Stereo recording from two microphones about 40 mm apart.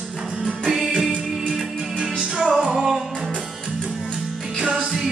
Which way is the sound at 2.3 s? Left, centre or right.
Centre.